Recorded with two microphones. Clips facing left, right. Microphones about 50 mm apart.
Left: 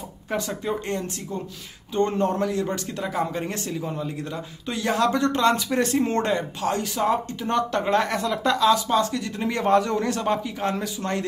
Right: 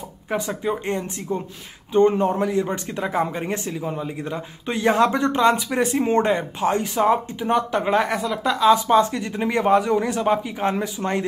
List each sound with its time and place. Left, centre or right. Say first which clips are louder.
0.3 s a man's voice: right 3 dB; centre
8.5 s a man's voice: right 6 dB; right